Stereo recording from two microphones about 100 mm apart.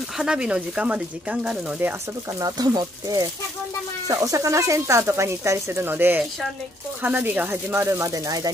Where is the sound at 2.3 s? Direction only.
40° right (ahead or behind).